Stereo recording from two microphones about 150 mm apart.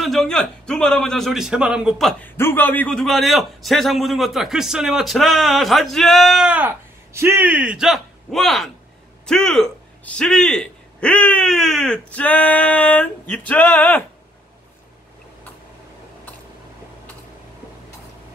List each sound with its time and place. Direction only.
0.0 s a man's voice: centre (ahead or behind)
2.2 s a man's voice: 15° left (ahead or behind)